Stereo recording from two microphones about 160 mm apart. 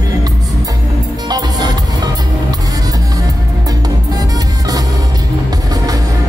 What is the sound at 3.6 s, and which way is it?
Music, 25° right (ahead or behind).